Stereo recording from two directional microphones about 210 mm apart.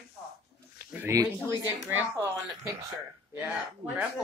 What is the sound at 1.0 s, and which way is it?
Speech, 15° right (ahead or behind).